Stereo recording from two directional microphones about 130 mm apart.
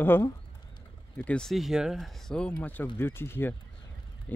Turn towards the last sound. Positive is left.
turn(degrees=15)  # may be behind; listen again after turning